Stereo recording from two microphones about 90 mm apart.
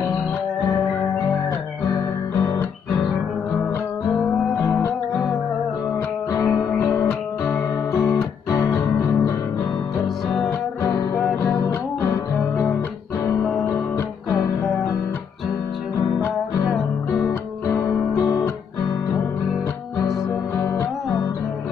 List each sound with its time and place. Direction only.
6.3 s music: 35° left (ahead or behind)
7.0 s guitar: 30° left (ahead or behind)
8.5 s music: 40° left (ahead or behind)
10.0 s music: centre (ahead or behind)
11.4 s music: 25° left (ahead or behind)
17.6 s music: 35° left (ahead or behind)